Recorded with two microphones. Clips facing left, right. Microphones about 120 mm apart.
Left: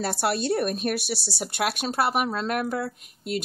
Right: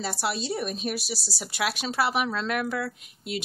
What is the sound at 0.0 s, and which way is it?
A woman's voice, 60° left (ahead or behind).